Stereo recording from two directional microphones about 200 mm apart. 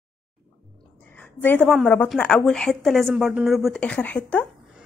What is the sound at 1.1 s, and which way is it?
A woman's voice, 5° left (ahead or behind).